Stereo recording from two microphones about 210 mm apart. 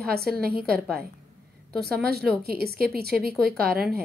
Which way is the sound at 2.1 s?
50° right (ahead or behind).